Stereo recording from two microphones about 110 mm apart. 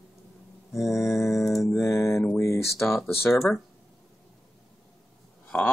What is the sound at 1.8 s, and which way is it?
Speech, 25° left (ahead or behind).